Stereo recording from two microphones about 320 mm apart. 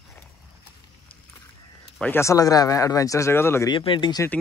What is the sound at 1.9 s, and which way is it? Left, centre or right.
Speech, centre.